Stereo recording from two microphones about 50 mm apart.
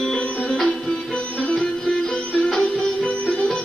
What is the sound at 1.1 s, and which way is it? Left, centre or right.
Music, left.